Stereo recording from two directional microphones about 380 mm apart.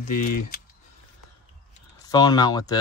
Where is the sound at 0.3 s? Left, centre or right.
Left.